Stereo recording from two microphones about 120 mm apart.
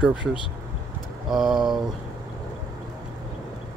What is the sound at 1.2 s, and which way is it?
Speech, centre (ahead or behind).